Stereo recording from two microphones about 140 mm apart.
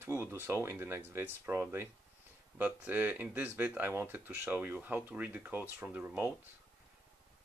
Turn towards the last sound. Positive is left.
turn(degrees=-10)  # may be behind; listen again after turning